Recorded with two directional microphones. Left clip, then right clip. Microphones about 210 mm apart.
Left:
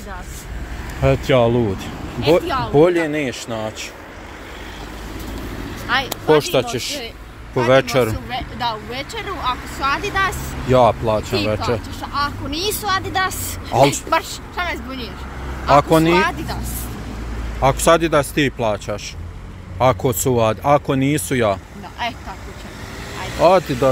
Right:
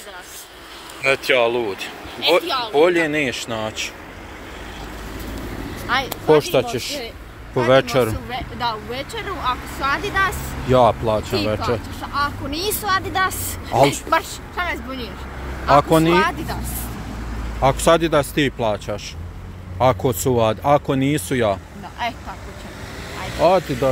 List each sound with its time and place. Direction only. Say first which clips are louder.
1.2 s speech: left 3 dB; 15° left (ahead or behind)
5.9 s speech: left 1 dB; 5° right (ahead or behind)
17.6 s speech: left 1 dB; centre (ahead or behind)
23.1 s vehicle: left 1 dB; 40° left (ahead or behind)
23.4 s speech: left 3 dB; 10° left (ahead or behind)